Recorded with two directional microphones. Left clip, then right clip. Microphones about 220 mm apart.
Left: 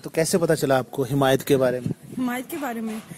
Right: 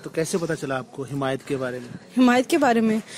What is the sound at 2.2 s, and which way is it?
Speech, 50° right (ahead or behind).